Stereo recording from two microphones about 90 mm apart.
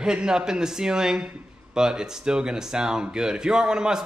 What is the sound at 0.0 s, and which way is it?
Speech, 10° right (ahead or behind).